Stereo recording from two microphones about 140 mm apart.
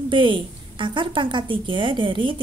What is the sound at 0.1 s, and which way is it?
A woman's voice, 35° right (ahead or behind).